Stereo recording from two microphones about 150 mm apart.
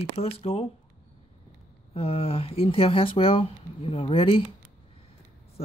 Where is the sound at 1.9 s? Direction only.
40° left (ahead or behind).